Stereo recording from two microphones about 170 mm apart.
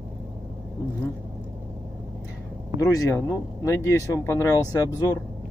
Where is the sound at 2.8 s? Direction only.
20° left (ahead or behind).